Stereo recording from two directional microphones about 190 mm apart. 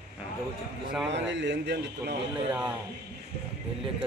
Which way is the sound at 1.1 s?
70° right (ahead or behind).